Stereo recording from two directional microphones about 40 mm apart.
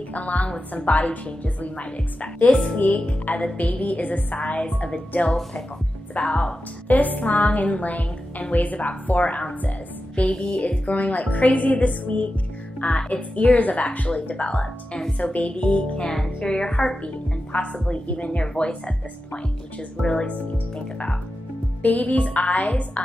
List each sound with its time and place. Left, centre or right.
0.1 s a woman's voice: left
0.9 s a woman's voice: left
2.5 s a woman's voice: centre
2.8 s a woman's voice: left
4.4 s a woman's voice: left; by 17.0 s centre
17.0 s a woman's voice: left
17.7 s a woman's voice: centre
18.0 s a woman's voice: left
20.0 s a woman's voice: left
21.8 s a woman's voice: left